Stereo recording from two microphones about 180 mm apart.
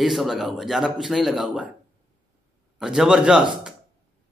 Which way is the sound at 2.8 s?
5° right (ahead or behind).